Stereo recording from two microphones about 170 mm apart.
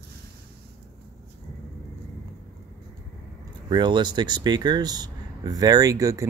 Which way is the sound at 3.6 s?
25° right (ahead or behind).